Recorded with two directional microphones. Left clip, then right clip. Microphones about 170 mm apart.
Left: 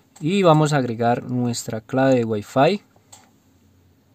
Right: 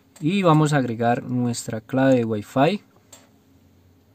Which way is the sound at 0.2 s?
15° left (ahead or behind).